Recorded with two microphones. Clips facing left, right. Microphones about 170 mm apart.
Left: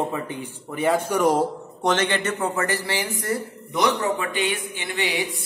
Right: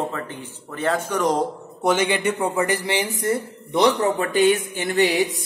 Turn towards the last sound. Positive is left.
turn(degrees=-40)  # may be behind; listen again after turning